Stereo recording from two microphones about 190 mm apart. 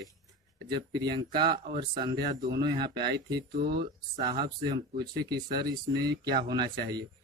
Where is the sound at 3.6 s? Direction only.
55° right (ahead or behind).